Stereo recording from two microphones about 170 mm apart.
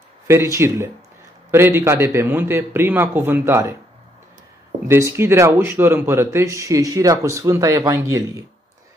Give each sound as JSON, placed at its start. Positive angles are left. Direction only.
{"t": 0.3, "sound": "speech", "side_deg": -15}
{"t": 4.8, "sound": "speech", "side_deg": -15}